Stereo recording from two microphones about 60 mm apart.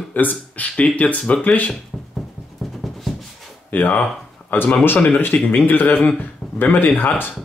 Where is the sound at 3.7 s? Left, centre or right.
Left.